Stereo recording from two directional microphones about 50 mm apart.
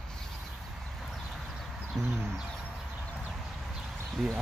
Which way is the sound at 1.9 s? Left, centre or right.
Centre.